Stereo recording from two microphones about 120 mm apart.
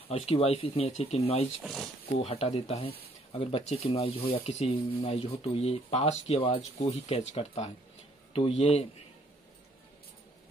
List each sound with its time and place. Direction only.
0.1 s speech: 55° left (ahead or behind)
1.6 s speech: centre (ahead or behind)
2.1 s speech: 60° left (ahead or behind)